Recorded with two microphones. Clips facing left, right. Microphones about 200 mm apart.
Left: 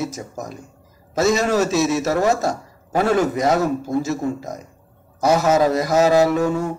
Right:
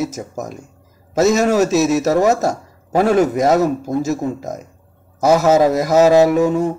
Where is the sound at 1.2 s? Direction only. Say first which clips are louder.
Right 4 dB; centre (ahead or behind).